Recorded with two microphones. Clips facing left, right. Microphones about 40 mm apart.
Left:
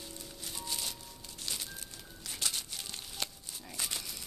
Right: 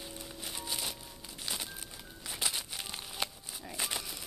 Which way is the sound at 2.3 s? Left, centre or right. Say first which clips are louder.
Right 2 dB; centre.